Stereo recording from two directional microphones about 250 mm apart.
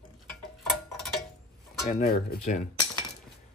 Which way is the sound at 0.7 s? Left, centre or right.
Centre.